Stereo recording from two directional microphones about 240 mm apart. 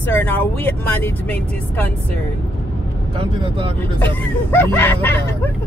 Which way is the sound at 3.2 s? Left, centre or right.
Right.